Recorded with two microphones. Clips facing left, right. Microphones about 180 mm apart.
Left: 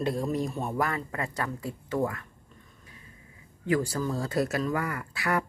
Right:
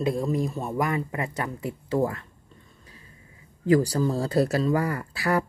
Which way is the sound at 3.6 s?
35° right (ahead or behind).